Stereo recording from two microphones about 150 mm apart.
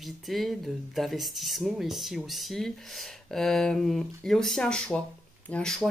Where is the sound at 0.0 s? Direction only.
Centre (ahead or behind).